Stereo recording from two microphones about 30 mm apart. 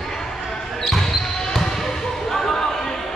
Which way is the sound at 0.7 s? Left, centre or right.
Centre.